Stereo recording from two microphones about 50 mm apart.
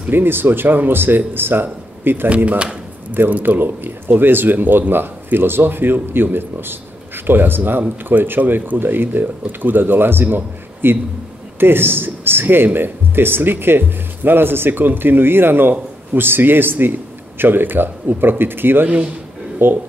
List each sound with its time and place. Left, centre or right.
0.1 s speech: right
2.2 s speech: right
3.1 s speech: right